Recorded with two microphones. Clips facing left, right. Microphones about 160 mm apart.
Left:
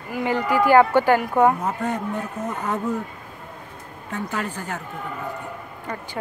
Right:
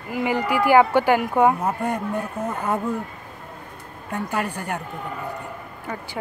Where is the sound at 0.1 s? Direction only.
15° right (ahead or behind).